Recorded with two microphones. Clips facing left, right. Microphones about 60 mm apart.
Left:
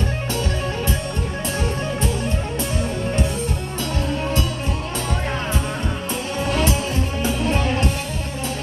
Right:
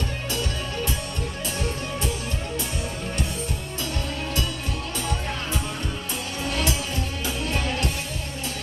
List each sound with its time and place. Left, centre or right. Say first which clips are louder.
6.4 s music: left 6 dB; left